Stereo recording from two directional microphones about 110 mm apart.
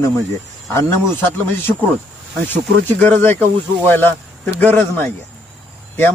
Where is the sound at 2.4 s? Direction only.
15° left (ahead or behind).